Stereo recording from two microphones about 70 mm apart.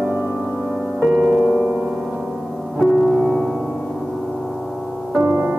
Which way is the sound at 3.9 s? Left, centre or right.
Centre.